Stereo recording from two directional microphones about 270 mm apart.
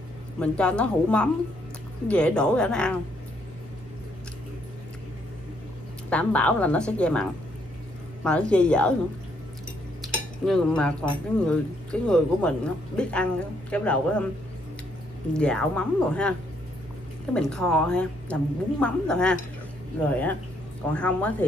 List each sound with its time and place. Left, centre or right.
0.4 s speech: centre
6.0 s speech: centre
10.0 s cutlery: centre
11.3 s speech: centre
15.3 s speech: centre
20.9 s speech: centre